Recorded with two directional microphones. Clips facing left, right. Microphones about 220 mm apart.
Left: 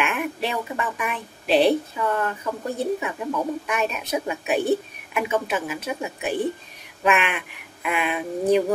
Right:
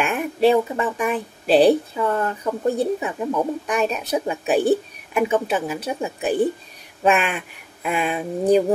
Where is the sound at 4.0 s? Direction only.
35° right (ahead or behind).